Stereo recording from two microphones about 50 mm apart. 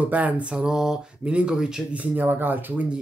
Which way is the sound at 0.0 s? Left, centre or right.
Right.